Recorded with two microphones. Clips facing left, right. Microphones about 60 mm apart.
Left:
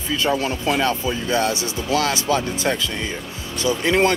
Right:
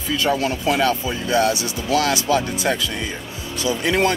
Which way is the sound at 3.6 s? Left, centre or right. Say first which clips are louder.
Left 1 dB; left.